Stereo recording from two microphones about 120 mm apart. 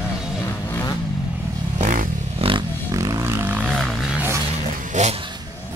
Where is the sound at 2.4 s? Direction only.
55° right (ahead or behind).